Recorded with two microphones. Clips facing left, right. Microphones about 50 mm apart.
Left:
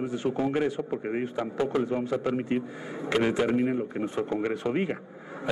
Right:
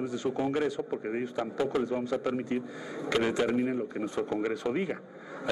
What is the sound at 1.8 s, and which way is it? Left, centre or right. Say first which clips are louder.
Speech: left 2 dB; left.